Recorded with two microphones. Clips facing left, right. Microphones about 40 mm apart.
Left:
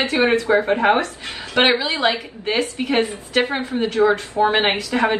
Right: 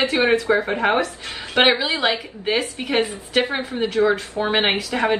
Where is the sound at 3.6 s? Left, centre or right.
Centre.